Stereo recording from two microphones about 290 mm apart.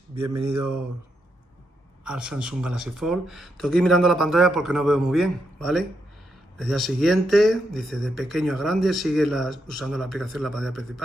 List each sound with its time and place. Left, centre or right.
0.1 s mantra: centre
0.4 s mantra: right
2.0 s speech: centre